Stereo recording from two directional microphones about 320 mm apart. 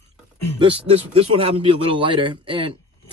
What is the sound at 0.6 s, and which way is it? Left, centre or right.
Speech, centre.